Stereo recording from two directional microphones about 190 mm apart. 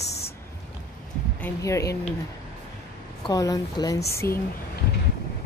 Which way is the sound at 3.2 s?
20° left (ahead or behind).